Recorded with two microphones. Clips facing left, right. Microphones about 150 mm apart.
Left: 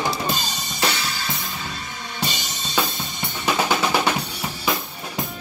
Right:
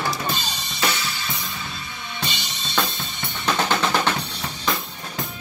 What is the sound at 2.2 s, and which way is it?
Drum kit, 45° left (ahead or behind).